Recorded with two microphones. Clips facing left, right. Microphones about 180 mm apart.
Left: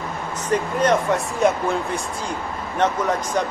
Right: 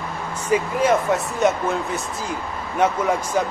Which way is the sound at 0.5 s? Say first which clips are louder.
Right 1 dB; 5° right (ahead or behind).